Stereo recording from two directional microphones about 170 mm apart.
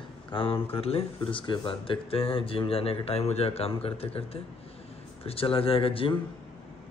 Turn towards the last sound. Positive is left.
turn(degrees=30)  # may be behind; listen again after turning